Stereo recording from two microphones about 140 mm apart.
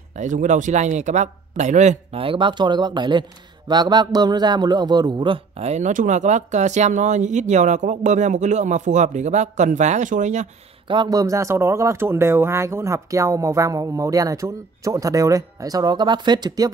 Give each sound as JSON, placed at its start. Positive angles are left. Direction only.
{"t": 0.1, "sound": "speech", "side_deg": -60}
{"t": 5.6, "sound": "speech", "side_deg": -55}
{"t": 10.9, "sound": "speech", "side_deg": -30}